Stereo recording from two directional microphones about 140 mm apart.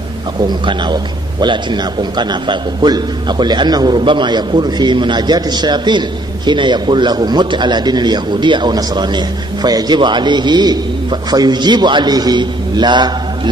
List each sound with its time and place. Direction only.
0.4 s a man's voice: 30° right (ahead or behind)